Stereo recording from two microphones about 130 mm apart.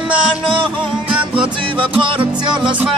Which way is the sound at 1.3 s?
40° right (ahead or behind).